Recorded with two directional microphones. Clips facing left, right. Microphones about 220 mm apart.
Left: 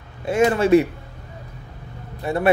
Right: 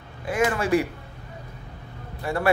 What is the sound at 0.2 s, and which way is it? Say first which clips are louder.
Speech: left 6 dB; 25° left (ahead or behind).